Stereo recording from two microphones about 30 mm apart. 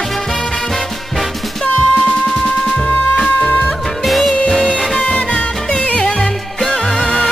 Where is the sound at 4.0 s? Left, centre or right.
Centre.